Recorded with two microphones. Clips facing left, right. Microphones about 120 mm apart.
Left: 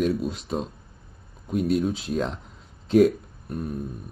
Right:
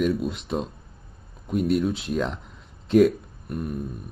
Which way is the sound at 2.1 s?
40° left (ahead or behind).